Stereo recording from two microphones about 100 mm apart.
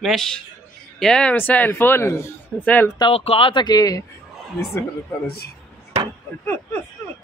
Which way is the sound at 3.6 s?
40° left (ahead or behind).